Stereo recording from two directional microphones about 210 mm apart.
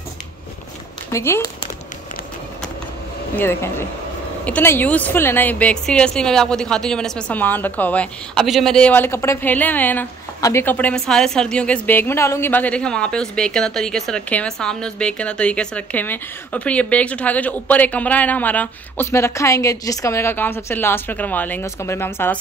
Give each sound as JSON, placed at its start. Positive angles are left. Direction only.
{"t": 1.1, "sound": "a woman's voice", "side_deg": 15}
{"t": 3.3, "sound": "a woman's voice", "side_deg": 10}